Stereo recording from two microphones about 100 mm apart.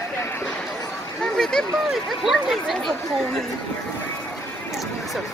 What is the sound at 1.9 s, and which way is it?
Speech, 5° right (ahead or behind).